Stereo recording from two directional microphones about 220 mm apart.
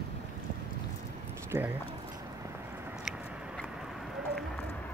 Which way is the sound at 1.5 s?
15° right (ahead or behind).